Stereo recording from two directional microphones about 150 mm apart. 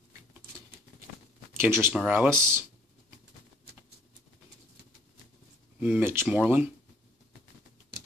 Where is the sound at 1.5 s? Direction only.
15° right (ahead or behind).